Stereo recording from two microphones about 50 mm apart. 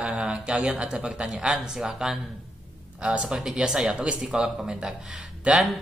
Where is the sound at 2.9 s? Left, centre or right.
Right.